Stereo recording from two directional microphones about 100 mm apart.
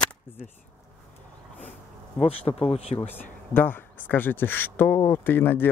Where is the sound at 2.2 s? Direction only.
80° left.